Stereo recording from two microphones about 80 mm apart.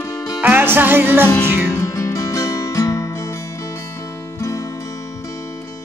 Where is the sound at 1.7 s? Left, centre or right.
Left.